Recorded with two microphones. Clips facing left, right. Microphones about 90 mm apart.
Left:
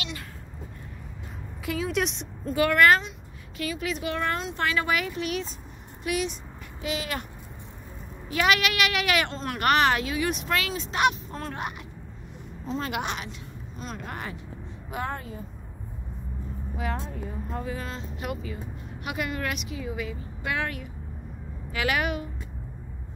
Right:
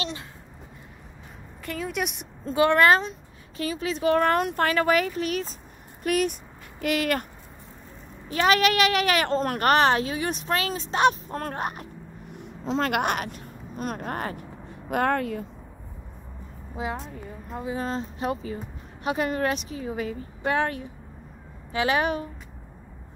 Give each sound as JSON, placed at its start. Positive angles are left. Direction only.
{"t": 1.7, "sound": "a woman's voice", "side_deg": 0}
{"t": 2.4, "sound": "speech", "side_deg": -30}
{"t": 4.3, "sound": "a woman's voice", "side_deg": -55}
{"t": 8.3, "sound": "speech", "side_deg": -40}
{"t": 12.6, "sound": "speech", "side_deg": -75}
{"t": 14.9, "sound": "a woman's voice", "side_deg": -60}
{"t": 16.7, "sound": "a woman's voice", "side_deg": -20}
{"t": 17.7, "sound": "speech", "side_deg": -35}